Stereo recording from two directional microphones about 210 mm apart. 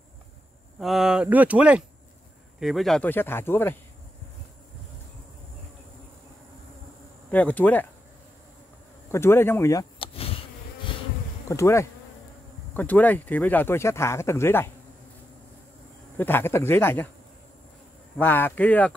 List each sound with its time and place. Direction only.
0.7 s speech: centre (ahead or behind)
7.2 s speech: 5° left (ahead or behind)
9.1 s speech: 10° left (ahead or behind)
10.1 s insect: 25° left (ahead or behind)
11.4 s speech: 15° left (ahead or behind)
16.2 s speech: 10° left (ahead or behind)
18.1 s speech: 10° left (ahead or behind)